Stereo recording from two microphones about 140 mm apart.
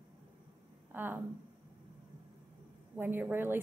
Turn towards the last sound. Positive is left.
turn(degrees=-15)  # may be behind; listen again after turning